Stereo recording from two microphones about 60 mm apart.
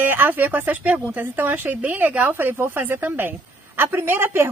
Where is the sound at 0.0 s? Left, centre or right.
Right.